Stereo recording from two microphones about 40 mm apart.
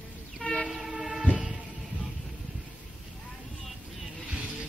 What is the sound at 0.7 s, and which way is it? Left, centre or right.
Train, centre.